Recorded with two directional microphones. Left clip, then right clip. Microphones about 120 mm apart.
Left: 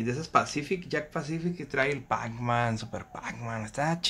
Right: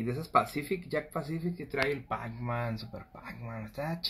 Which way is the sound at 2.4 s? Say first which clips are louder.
Left 8 dB; 15° left (ahead or behind).